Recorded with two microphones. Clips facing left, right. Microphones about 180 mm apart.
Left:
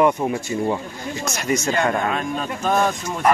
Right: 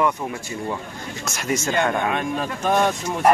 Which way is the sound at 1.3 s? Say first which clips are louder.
Left 1 dB; centre (ahead or behind).